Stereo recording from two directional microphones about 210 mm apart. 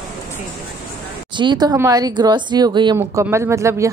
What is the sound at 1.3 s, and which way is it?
Speech, 20° right (ahead or behind).